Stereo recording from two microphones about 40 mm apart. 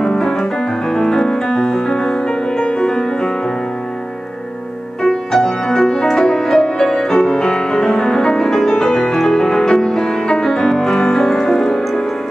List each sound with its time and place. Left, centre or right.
0.0 s piano: centre
2.2 s music: left
5.0 s music: centre